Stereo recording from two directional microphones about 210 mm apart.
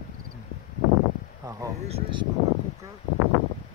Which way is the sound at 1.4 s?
15° right (ahead or behind).